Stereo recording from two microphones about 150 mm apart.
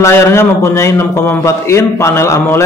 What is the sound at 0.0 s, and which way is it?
A man's voice, 15° left (ahead or behind).